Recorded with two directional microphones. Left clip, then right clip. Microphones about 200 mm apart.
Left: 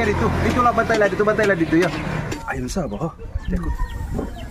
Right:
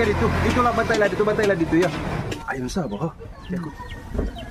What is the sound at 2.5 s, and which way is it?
Speech, 10° left (ahead or behind).